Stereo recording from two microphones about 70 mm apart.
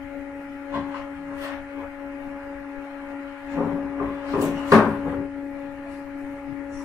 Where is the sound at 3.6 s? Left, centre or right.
Right.